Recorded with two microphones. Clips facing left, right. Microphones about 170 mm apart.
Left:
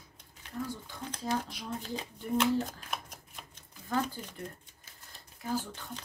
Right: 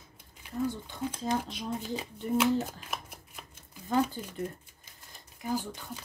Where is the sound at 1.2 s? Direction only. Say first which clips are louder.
Right 1 dB; 20° right (ahead or behind).